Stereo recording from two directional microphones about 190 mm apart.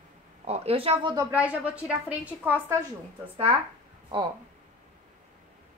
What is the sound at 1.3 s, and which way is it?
A woman's voice, 10° right (ahead or behind).